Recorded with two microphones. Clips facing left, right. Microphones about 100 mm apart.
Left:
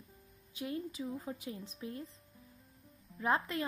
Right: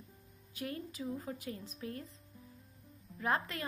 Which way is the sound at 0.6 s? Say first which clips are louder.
Left 2 dB; 15° left (ahead or behind).